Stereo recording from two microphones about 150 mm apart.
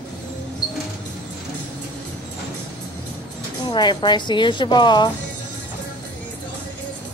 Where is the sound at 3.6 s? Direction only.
30° left (ahead or behind).